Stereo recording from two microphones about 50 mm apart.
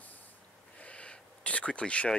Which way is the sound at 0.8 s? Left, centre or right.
Left.